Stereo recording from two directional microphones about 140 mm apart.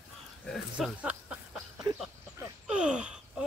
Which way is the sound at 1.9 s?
30° right (ahead or behind).